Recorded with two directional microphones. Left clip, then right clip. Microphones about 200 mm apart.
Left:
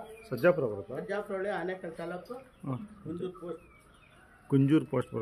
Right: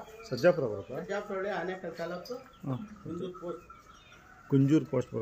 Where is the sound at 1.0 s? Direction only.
35° left (ahead or behind).